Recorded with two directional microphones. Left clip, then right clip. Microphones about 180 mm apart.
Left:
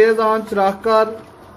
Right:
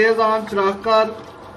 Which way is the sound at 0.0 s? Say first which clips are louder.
Left 2 dB; 60° left (ahead or behind).